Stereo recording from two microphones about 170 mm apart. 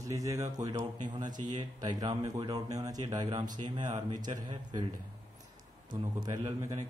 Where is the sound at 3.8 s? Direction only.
45° right (ahead or behind).